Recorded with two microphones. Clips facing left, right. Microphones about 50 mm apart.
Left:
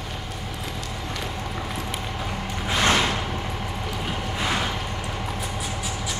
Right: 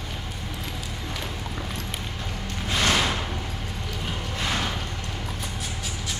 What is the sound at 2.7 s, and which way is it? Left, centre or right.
Music, centre.